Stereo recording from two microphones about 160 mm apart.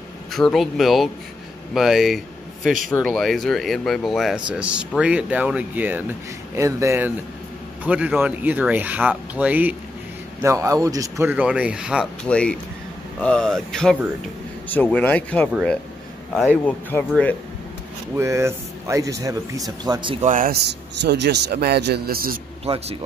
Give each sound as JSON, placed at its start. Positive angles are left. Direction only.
{"t": 0.3, "sound": "speech", "side_deg": 0}
{"t": 12.3, "sound": "speech", "side_deg": 5}
{"t": 17.1, "sound": "speech", "side_deg": 10}
{"t": 18.1, "sound": "speech", "side_deg": -15}
{"t": 20.2, "sound": "speech", "side_deg": -55}
{"t": 20.6, "sound": "a man's voice", "side_deg": -90}